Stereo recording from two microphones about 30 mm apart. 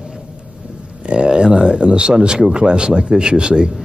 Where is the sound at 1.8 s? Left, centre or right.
Right.